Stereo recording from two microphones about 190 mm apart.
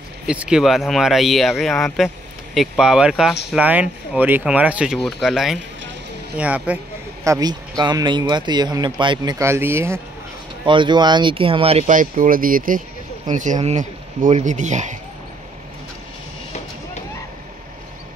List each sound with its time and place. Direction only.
0.3 s speech: 5° right (ahead or behind)
7.2 s speech: 20° right (ahead or behind)
10.6 s speech: 25° right (ahead or behind)